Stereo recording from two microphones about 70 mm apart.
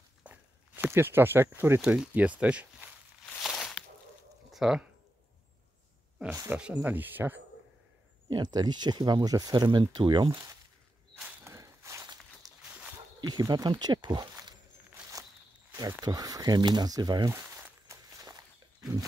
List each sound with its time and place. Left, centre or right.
0.2 s walk: right
0.9 s speech: right
2.0 s speech: centre
3.4 s a sound: centre
6.5 s speech: centre
8.3 s speech: right
11.4 s a sound: right
12.6 s a sound: centre
13.2 s speech: right
16.0 s speech: right
17.3 s a sound: right
17.8 s walk: right